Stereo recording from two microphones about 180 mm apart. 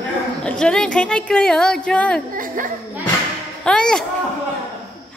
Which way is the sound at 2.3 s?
50° right (ahead or behind).